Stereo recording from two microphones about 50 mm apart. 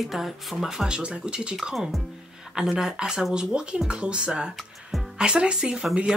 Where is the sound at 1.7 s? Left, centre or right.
Centre.